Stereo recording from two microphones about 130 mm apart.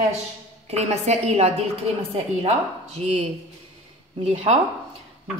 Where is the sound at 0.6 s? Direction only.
55° right (ahead or behind).